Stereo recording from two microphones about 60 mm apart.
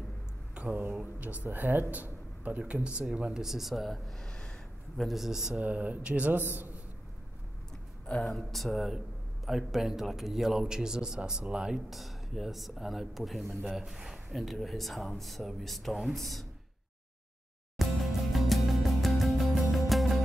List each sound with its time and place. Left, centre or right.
0.6 s speech: right; by 4.3 s centre
4.3 s snort: centre
5.0 s speech: centre
5.6 s a man's voice: right
8.2 s speech: centre
11.9 s speech: centre
17.7 s music: centre